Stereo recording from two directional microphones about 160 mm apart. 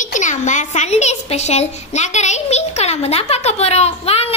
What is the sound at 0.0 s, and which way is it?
A woman's voice, 50° left (ahead or behind).